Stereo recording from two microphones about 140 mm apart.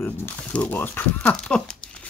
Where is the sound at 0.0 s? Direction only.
15° left (ahead or behind).